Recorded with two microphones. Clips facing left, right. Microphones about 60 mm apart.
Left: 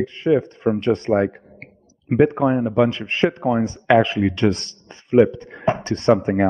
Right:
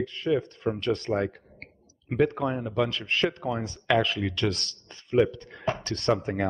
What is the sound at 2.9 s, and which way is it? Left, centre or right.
Speech, centre.